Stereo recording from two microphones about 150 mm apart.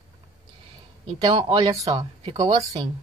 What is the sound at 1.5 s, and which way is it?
Speech, 20° right (ahead or behind).